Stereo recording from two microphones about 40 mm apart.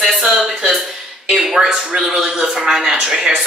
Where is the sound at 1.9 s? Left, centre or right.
Centre.